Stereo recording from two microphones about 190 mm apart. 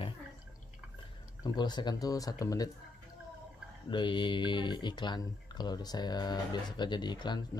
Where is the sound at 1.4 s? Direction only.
20° left (ahead or behind).